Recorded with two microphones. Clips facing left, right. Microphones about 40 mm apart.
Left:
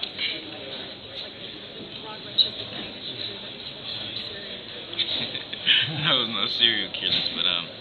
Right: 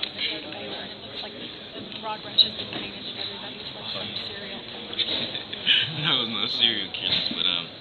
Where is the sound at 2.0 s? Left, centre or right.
Right.